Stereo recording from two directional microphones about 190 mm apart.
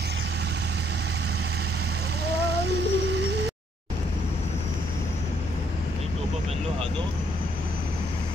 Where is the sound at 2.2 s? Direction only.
60° right (ahead or behind).